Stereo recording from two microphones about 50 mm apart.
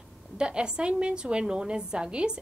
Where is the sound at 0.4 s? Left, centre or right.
Centre.